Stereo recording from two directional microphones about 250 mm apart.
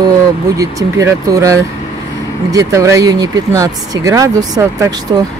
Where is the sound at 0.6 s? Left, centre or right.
Centre.